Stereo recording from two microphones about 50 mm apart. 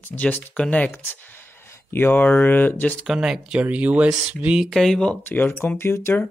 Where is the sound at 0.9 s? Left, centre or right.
Left.